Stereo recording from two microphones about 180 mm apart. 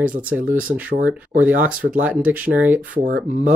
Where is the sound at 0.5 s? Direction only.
10° right (ahead or behind).